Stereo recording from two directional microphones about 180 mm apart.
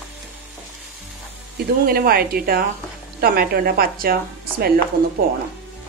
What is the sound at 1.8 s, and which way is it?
A woman's voice, 55° right (ahead or behind).